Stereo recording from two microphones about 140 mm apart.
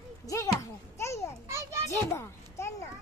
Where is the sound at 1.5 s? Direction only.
20° right (ahead or behind).